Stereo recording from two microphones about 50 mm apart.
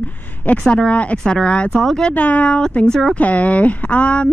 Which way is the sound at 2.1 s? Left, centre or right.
Left.